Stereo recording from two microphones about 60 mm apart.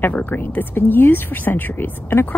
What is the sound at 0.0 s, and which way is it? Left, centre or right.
Speech, left.